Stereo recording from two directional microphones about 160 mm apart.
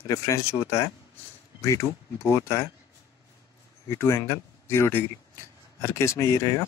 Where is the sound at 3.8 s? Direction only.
15° left (ahead or behind).